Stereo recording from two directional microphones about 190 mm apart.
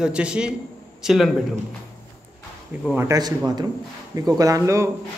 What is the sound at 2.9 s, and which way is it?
A man's voice, 15° right (ahead or behind).